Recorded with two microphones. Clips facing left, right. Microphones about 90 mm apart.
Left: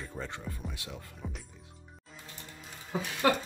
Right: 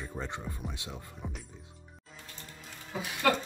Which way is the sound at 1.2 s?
25° right (ahead or behind).